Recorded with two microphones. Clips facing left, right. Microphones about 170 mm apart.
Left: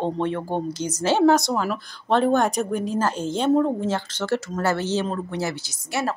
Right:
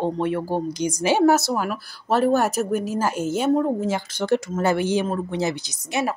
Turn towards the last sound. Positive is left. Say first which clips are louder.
# right 1 dB
turn(degrees=-20)  # may be behind; listen again after turning